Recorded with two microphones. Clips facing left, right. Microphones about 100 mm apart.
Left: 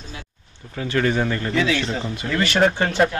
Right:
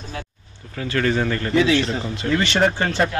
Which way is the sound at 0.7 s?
15° left (ahead or behind).